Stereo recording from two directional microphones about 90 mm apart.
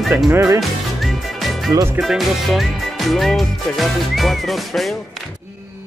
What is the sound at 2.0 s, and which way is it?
Speech, centre (ahead or behind).